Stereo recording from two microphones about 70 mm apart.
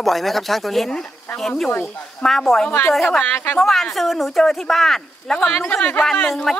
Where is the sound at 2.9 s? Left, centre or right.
Centre.